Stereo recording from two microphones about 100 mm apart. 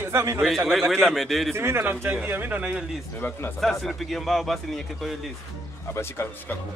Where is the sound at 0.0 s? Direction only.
30° right (ahead or behind).